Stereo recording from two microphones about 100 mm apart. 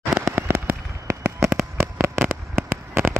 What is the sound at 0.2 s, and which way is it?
Fireworks, 25° right (ahead or behind).